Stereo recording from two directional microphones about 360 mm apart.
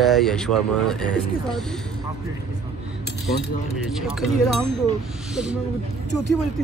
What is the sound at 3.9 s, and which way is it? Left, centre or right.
Speech, centre.